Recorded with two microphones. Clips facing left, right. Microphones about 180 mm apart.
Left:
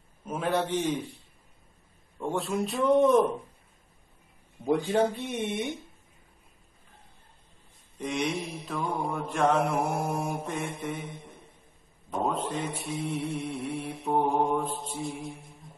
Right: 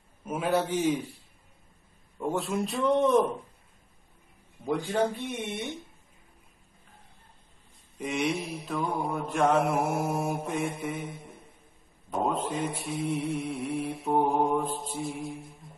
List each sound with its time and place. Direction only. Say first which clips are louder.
0.2 s a man's voice: right 1 dB; 5° right (ahead or behind)
2.1 s mantra: even; centre (ahead or behind)
4.6 s a man's voice: left 3 dB; 20° left (ahead or behind)
8.0 s mantra: right 1 dB; 5° right (ahead or behind)